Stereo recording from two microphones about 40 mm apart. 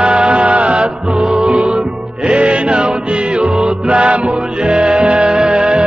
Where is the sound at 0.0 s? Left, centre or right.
Right.